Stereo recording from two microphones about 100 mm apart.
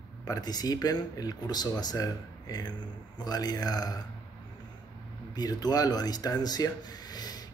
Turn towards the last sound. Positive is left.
turn(degrees=40)  # may be behind; listen again after turning